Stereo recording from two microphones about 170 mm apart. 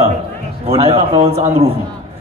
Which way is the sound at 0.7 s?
35° right (ahead or behind).